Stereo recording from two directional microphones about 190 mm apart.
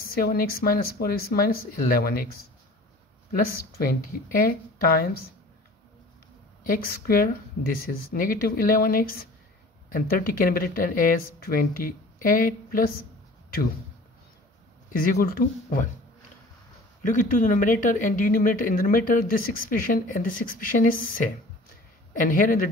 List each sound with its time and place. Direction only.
0.1 s speech: 50° left (ahead or behind)
3.7 s speech: 50° left (ahead or behind)
6.6 s speech: 50° left (ahead or behind)
14.9 s speech: 45° left (ahead or behind)
17.0 s speech: 45° left (ahead or behind)